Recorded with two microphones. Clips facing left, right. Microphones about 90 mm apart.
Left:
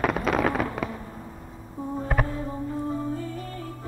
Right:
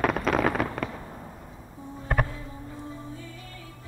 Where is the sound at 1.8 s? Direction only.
45° left (ahead or behind).